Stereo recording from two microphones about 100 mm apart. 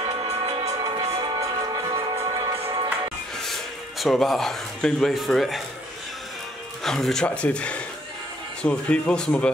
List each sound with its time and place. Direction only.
0.0 s music: 80° right
0.7 s music: 50° right (ahead or behind)
4.0 s speech: centre (ahead or behind)
6.8 s speech: 5° left (ahead or behind)